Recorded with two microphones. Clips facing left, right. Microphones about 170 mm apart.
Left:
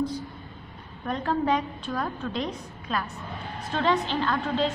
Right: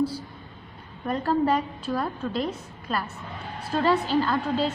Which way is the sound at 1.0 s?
5° right (ahead or behind).